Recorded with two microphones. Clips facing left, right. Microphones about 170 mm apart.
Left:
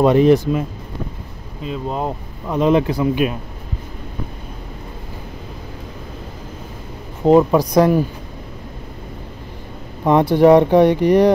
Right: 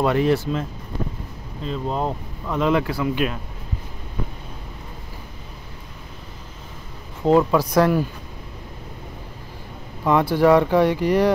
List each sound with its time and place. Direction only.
0.0 s speech: 20° left (ahead or behind)
2.4 s speech: 20° left (ahead or behind)
7.2 s speech: 15° left (ahead or behind)
10.0 s speech: 20° left (ahead or behind)